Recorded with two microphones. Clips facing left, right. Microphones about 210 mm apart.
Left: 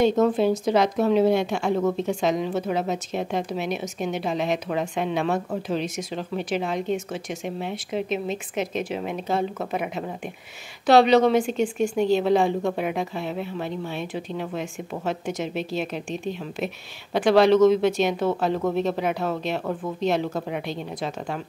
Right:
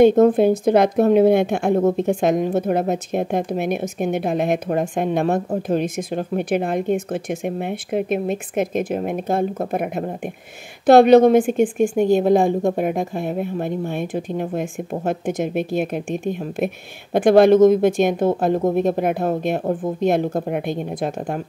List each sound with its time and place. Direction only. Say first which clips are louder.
0.0 s a woman's voice: right 7 dB; 55° right (ahead or behind)
19.6 s speech: right 6 dB; 30° right (ahead or behind)
20.0 s a woman's voice: right 4 dB; 50° right (ahead or behind)